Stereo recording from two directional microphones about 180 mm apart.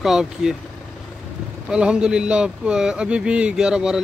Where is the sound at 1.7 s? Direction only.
5° right (ahead or behind).